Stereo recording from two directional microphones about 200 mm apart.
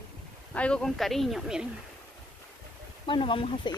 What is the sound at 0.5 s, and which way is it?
Speech, 5° left (ahead or behind).